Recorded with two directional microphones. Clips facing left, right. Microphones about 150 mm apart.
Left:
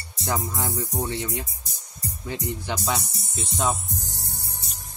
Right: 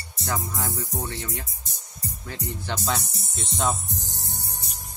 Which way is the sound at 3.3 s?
5° left (ahead or behind).